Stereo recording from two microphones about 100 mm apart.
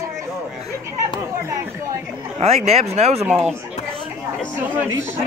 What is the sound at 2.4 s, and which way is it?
Speech, 90° right.